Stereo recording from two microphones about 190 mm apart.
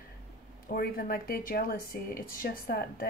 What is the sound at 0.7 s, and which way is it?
Speech, 50° left (ahead or behind).